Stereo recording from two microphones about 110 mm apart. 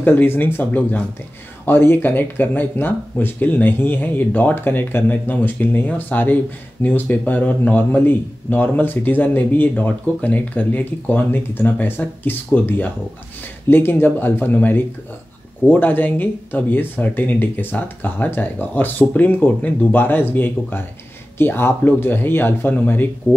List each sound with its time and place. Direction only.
0.0 s a man's voice: 20° left (ahead or behind)